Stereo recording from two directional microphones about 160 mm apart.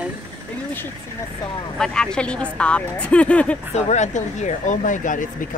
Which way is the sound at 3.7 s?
45° left (ahead or behind).